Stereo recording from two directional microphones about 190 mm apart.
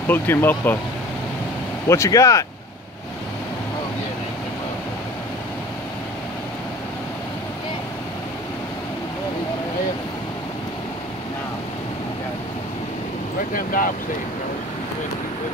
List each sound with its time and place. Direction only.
0.1 s speech: 10° left (ahead or behind)
1.9 s speech: 15° left (ahead or behind)
13.5 s speech: 45° left (ahead or behind)